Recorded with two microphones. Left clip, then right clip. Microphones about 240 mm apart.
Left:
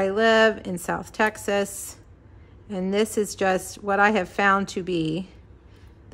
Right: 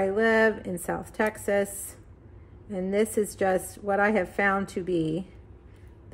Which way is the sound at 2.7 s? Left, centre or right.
Centre.